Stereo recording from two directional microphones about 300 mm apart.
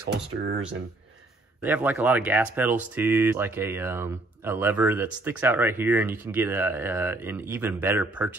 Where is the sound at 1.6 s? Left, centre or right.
Centre.